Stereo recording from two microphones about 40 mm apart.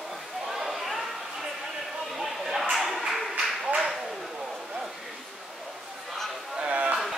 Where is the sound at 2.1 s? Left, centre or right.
Centre.